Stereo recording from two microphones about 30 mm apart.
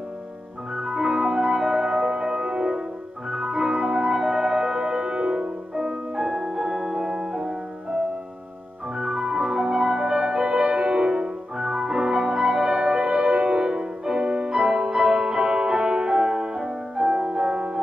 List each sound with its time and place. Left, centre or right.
0.7 s music: right